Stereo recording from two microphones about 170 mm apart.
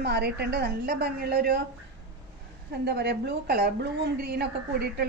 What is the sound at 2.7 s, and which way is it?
A woman's voice, 75° right (ahead or behind).